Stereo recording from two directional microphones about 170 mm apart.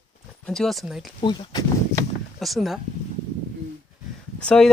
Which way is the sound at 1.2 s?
25° left (ahead or behind).